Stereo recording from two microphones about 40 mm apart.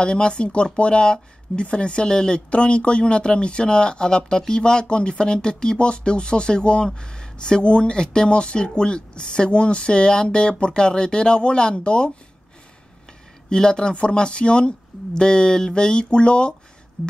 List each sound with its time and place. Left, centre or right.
0.0 s speech: left
13.5 s speech: left
17.0 s a sound: centre